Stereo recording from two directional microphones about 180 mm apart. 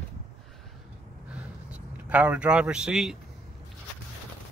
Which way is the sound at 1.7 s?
10° right (ahead or behind).